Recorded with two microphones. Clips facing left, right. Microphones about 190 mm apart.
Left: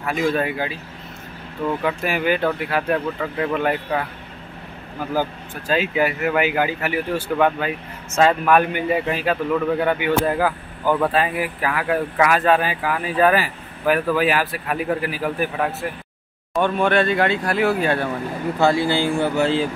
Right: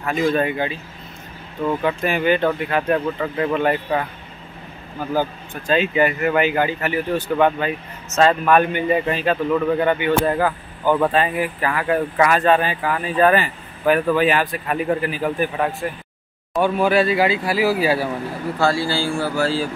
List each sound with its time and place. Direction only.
0.0 s speech: 5° left (ahead or behind)
5.7 s speech: 5° left (ahead or behind)
18.6 s speech: 20° left (ahead or behind)